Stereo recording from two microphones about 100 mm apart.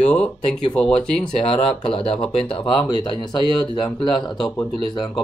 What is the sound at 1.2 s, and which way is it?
Speech, 60° left (ahead or behind).